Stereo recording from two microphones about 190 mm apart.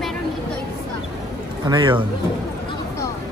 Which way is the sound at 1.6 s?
25° right (ahead or behind).